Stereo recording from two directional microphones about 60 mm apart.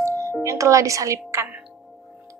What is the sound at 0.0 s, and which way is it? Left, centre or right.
Music, right.